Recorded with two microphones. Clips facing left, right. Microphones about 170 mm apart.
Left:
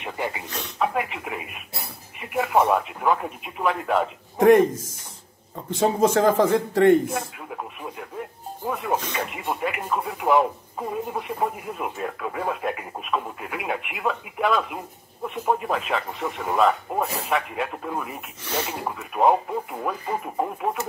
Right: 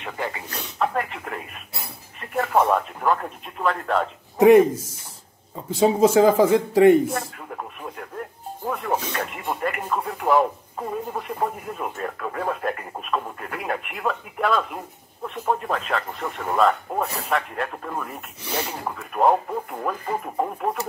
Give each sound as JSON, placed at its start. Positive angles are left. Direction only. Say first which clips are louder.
{"t": 0.0, "sound": "speech", "louder": "left 1 dB", "side_deg": 15}
{"t": 0.5, "sound": "speech", "louder": "even", "side_deg": 0}
{"t": 4.4, "sound": "speech", "louder": "right 2 dB", "side_deg": -10}
{"t": 5.7, "sound": "speech", "louder": "right 3 dB", "side_deg": -5}
{"t": 7.1, "sound": "speech", "louder": "right 1 dB", "side_deg": 5}
{"t": 18.4, "sound": "speech", "louder": "even", "side_deg": -10}
{"t": 18.7, "sound": "speech", "louder": "left 1 dB", "side_deg": 5}